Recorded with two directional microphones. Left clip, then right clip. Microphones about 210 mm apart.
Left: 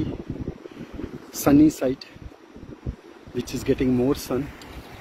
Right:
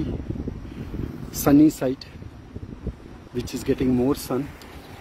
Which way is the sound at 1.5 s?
10° right (ahead or behind).